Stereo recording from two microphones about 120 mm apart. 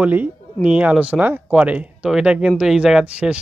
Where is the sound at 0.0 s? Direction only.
15° right (ahead or behind).